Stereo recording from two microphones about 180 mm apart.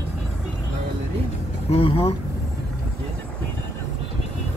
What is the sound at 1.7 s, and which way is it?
Speech, 35° left (ahead or behind).